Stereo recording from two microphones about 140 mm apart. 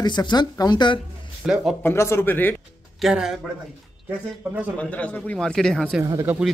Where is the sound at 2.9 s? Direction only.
5° right (ahead or behind).